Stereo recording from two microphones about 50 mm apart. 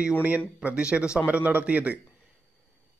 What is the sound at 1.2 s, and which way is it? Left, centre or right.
Speech, right.